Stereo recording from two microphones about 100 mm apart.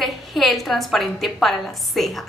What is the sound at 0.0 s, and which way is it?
A woman's voice, centre (ahead or behind).